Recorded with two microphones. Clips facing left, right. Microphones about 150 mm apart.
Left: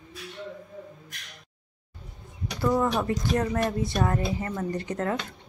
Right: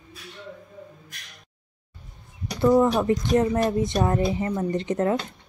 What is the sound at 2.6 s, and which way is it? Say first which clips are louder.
Speech: right 6 dB; 25° right (ahead or behind).